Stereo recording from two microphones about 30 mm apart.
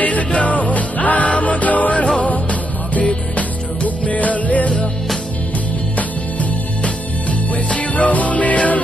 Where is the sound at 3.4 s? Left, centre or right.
Left.